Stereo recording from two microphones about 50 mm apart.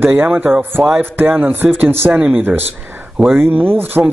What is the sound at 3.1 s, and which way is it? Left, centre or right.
Speech, right.